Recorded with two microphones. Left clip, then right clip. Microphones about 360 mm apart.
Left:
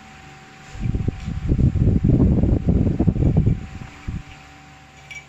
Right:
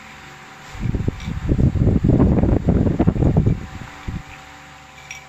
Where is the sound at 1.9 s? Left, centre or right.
Right.